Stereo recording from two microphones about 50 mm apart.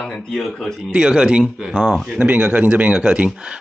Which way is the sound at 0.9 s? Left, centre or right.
Centre.